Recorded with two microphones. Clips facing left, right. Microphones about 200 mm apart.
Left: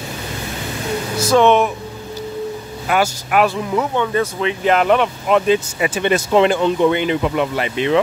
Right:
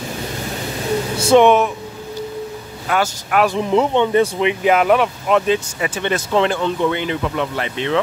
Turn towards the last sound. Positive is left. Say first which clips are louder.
# left 3 dB
turn(degrees=10)  # may be behind; listen again after turning